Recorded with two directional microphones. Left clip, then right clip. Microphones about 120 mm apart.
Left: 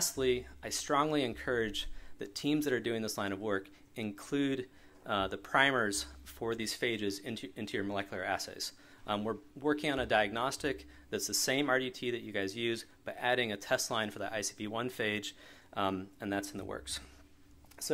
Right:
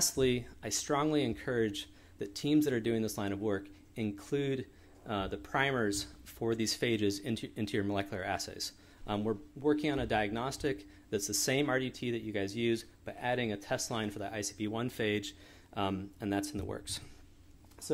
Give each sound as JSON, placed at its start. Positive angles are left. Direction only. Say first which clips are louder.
{"t": 0.0, "sound": "speech", "louder": "right 1 dB", "side_deg": -25}
{"t": 0.6, "sound": "speech", "louder": "right 1 dB", "side_deg": 5}
{"t": 0.9, "sound": "speech", "louder": "left 1 dB", "side_deg": 35}
{"t": 6.2, "sound": "a sound", "louder": "right 3 dB", "side_deg": 15}
{"t": 6.6, "sound": "speech", "louder": "right 3 dB", "side_deg": 0}
{"t": 8.3, "sound": "speech", "louder": "left 1 dB", "side_deg": 15}
{"t": 9.6, "sound": "speech", "louder": "right 1 dB", "side_deg": 50}
{"t": 11.1, "sound": "speech", "louder": "even", "side_deg": 20}
{"t": 17.8, "sound": "speech", "louder": "even", "side_deg": 65}